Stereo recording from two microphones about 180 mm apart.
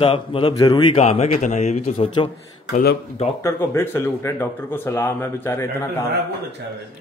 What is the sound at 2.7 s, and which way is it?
Speech, 60° left (ahead or behind).